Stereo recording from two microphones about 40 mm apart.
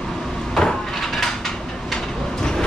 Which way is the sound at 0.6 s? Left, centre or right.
Centre.